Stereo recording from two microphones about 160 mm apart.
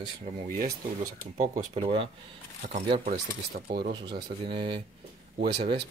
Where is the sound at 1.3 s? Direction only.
45° right (ahead or behind).